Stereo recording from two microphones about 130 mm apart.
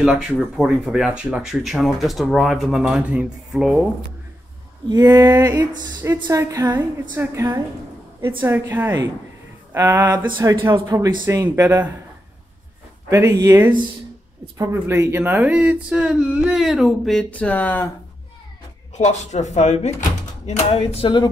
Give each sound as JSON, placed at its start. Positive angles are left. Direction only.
{"t": 0.0, "sound": "speech", "side_deg": -5}
{"t": 4.8, "sound": "speech", "side_deg": -30}
{"t": 6.2, "sound": "speech", "side_deg": -15}
{"t": 6.5, "sound": "speech", "side_deg": -30}
{"t": 10.1, "sound": "speech", "side_deg": -35}
{"t": 11.2, "sound": "speech", "side_deg": -20}
{"t": 13.3, "sound": "speech", "side_deg": -30}
{"t": 18.9, "sound": "speech", "side_deg": 60}